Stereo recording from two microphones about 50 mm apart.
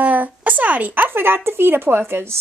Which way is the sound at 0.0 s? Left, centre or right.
Right.